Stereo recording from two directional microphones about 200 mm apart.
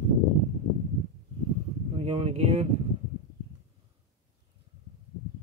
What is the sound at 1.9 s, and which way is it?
Speech, 30° right (ahead or behind).